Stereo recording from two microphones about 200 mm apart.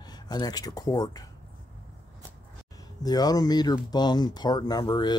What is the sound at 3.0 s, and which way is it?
Speech, 20° left (ahead or behind).